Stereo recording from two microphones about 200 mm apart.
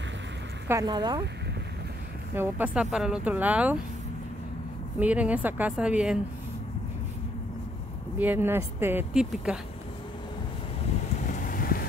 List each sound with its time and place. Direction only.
0.7 s speech: 20° right (ahead or behind)
2.3 s speech: 10° right (ahead or behind)
4.9 s speech: 5° right (ahead or behind)
8.2 s speech: 10° right (ahead or behind)
11.1 s vehicle: 40° left (ahead or behind)